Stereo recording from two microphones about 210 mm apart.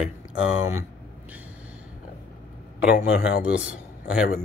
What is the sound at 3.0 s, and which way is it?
Speech, 45° left (ahead or behind).